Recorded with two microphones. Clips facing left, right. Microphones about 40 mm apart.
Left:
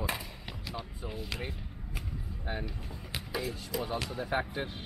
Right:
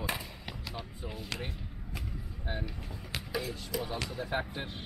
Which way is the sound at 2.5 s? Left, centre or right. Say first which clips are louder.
Even; centre.